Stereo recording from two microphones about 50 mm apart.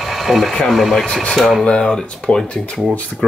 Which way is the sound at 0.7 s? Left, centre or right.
Centre.